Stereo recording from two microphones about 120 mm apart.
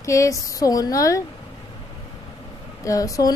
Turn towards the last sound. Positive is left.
turn(degrees=30)  # may be behind; listen again after turning